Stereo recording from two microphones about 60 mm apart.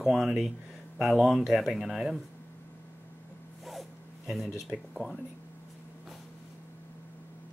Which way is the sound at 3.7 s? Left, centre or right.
Centre.